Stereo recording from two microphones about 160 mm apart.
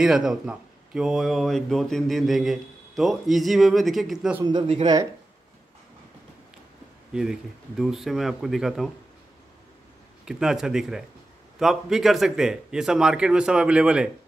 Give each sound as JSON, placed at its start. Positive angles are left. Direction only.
{"t": 0.0, "sound": "speech", "side_deg": -5}
{"t": 4.4, "sound": "speech", "side_deg": -30}
{"t": 7.1, "sound": "speech", "side_deg": -5}
{"t": 10.2, "sound": "speech", "side_deg": -5}